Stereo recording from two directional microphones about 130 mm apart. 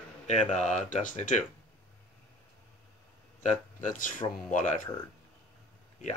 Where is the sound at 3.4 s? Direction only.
85° left.